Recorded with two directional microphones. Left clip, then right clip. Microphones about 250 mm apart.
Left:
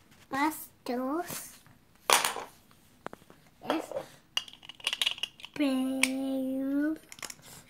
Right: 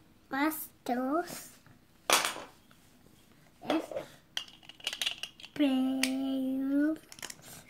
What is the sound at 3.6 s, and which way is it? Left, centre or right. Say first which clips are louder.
Dishes: even; centre.